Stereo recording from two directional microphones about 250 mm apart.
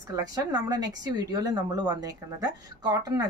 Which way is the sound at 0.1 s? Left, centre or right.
Centre.